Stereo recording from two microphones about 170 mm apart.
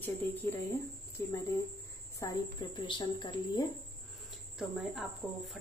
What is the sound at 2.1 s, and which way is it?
Speech, 20° left (ahead or behind).